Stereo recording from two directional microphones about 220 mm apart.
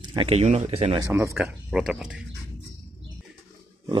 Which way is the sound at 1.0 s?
15° right (ahead or behind).